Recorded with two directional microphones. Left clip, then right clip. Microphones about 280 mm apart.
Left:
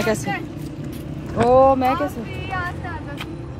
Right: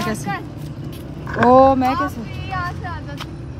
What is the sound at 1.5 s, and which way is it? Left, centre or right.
Speech, right.